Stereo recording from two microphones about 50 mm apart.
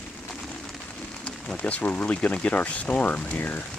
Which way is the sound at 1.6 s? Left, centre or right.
Left.